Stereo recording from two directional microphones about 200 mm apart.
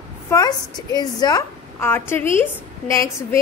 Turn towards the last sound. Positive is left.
turn(degrees=15)  # may be behind; listen again after turning